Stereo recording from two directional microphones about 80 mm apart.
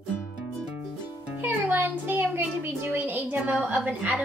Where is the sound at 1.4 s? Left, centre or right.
Right.